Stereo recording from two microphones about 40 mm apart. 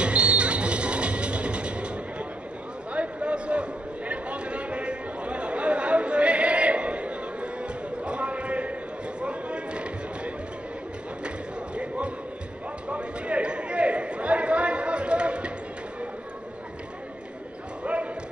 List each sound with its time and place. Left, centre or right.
0.0 s music: right
2.9 s a sound: right
17.8 s basketball bounce: right